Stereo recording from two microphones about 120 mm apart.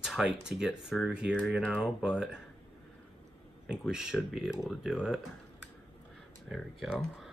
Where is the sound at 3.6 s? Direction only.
5° right (ahead or behind).